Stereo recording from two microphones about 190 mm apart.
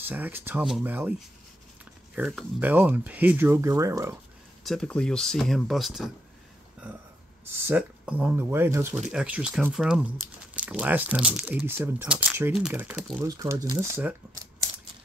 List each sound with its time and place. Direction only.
0.0 s speech: 10° right (ahead or behind)
2.1 s speech: 5° right (ahead or behind)
4.6 s speech: 5° left (ahead or behind)
7.5 s speech: 10° right (ahead or behind)
13.2 s speech: 15° right (ahead or behind)